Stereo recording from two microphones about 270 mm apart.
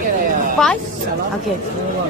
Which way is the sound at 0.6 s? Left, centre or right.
Centre.